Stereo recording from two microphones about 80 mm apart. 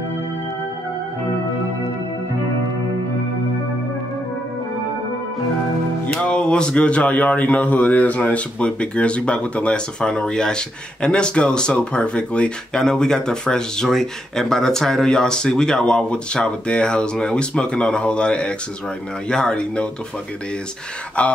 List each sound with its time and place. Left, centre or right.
6.1 s speech: centre
21.2 s speech: centre